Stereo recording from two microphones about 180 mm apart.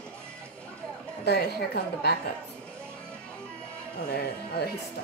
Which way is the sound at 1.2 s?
65° left (ahead or behind).